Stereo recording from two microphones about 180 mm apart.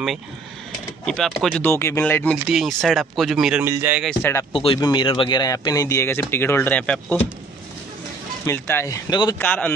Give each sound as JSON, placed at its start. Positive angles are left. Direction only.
{"t": 1.0, "sound": "speech", "side_deg": 0}
{"t": 2.3, "sound": "speech", "side_deg": 0}
{"t": 4.2, "sound": "speech", "side_deg": 15}
{"t": 4.5, "sound": "speech", "side_deg": 30}
{"t": 8.5, "sound": "speech", "side_deg": 15}
{"t": 9.4, "sound": "speech", "side_deg": 10}